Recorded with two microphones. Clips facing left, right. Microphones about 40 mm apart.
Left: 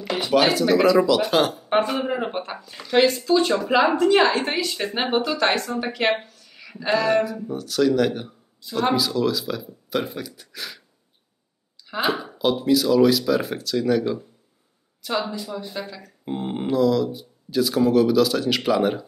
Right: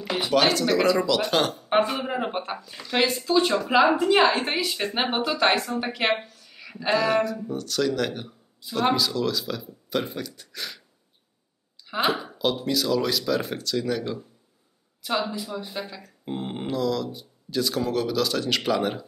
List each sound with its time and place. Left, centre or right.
0.0 s a woman's voice: centre
11.9 s a woman's voice: centre
15.2 s a woman's voice: centre